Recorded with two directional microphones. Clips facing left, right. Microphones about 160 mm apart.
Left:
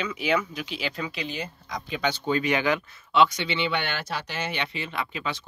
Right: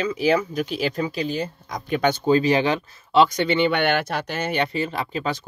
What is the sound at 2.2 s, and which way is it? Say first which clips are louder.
Speech: right 5 dB; 35° right (ahead or behind).